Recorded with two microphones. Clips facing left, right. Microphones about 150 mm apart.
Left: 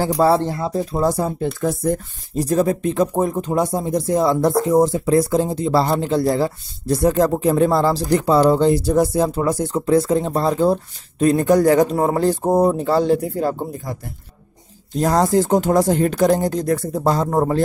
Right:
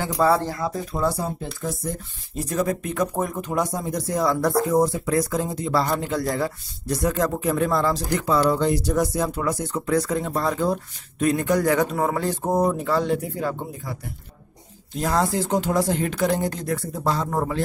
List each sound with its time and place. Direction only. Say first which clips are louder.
0.0 s speech: left 4 dB; 30° left (ahead or behind)
1.0 s speech: left 4 dB; 55° left (ahead or behind)
2.3 s speech: left 6 dB; 35° left (ahead or behind)
15.0 s speech: left 6 dB; 40° left (ahead or behind)